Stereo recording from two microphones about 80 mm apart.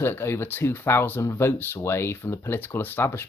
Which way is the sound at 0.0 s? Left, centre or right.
Left.